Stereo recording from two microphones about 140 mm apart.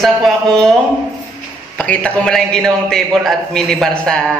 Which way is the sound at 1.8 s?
10° left (ahead or behind).